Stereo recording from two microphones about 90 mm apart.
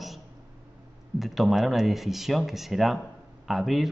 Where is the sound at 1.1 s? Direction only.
Centre (ahead or behind).